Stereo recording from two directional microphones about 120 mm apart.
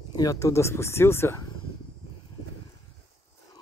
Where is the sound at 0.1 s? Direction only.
30° left (ahead or behind).